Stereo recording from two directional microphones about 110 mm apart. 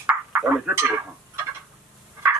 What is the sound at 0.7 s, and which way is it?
Speech, 10° right (ahead or behind).